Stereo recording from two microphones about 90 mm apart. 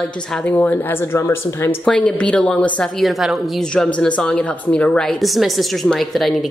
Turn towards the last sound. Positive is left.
turn(degrees=0)  # may be behind; listen again after turning